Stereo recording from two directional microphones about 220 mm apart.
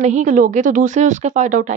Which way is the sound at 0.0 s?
35° right (ahead or behind).